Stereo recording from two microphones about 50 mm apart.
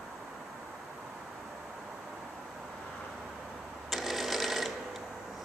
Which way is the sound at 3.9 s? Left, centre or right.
Centre.